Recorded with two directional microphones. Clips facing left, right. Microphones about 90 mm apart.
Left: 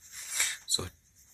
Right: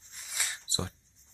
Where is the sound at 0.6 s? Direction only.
30° right (ahead or behind).